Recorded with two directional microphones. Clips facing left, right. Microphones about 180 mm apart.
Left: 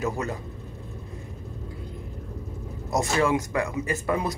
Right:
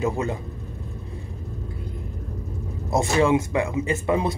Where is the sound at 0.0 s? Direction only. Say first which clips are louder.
Right 4 dB; 25° right (ahead or behind).